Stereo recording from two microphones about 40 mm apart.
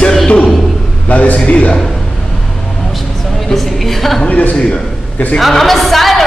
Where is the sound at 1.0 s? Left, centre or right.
Left.